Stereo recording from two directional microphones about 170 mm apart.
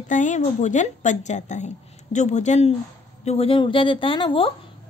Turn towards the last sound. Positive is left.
turn(degrees=30)  # may be behind; listen again after turning